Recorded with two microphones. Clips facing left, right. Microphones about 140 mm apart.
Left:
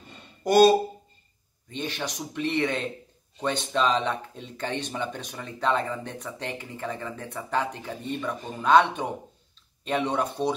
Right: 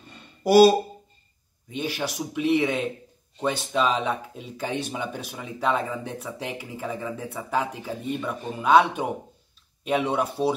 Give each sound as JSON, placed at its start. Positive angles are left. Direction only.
{"t": 0.4, "sound": "speech", "side_deg": -10}